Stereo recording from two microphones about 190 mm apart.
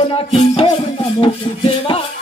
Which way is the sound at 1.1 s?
30° left (ahead or behind).